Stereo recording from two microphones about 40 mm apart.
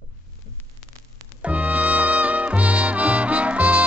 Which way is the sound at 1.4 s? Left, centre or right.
Right.